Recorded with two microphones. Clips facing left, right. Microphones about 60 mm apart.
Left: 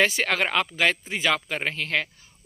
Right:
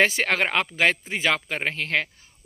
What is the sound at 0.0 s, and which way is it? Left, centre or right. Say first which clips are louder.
Speech: right 1 dB; right.